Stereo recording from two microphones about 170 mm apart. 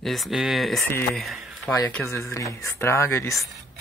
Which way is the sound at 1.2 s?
Centre (ahead or behind).